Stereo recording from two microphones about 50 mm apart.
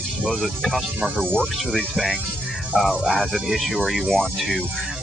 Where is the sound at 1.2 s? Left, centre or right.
Centre.